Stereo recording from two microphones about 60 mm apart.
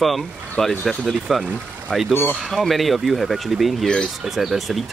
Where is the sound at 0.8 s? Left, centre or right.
Centre.